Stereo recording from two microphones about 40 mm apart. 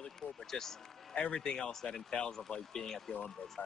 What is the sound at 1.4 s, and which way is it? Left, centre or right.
Speech, centre.